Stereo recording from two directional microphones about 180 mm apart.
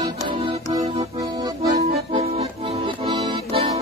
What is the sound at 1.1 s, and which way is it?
Accordion, 20° right (ahead or behind).